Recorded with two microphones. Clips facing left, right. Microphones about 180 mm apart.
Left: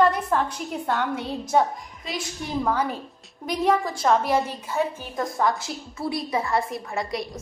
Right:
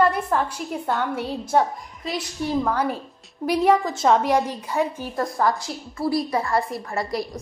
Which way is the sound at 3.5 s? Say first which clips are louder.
Right 4 dB; 15° right (ahead or behind).